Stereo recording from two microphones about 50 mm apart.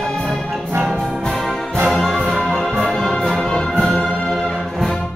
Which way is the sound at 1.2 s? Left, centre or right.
Centre.